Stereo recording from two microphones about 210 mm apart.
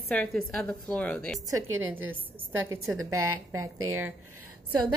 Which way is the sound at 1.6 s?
75° right (ahead or behind).